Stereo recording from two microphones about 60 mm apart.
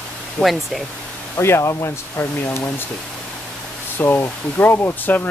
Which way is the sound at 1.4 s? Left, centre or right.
Left.